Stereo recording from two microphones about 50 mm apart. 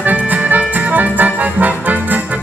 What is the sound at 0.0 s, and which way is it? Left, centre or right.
Music, right.